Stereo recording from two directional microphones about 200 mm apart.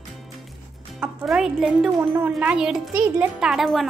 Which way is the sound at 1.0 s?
5° right (ahead or behind).